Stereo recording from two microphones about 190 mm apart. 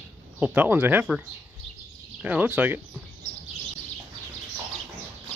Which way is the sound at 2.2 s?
10° right (ahead or behind).